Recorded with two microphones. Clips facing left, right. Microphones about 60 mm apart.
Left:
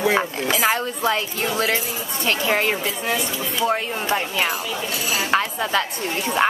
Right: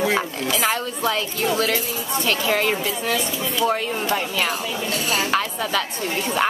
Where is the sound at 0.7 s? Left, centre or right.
Left.